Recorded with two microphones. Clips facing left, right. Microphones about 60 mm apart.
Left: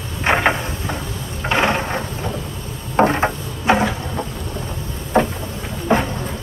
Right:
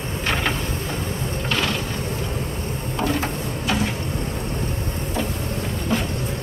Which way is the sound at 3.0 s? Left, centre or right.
Left.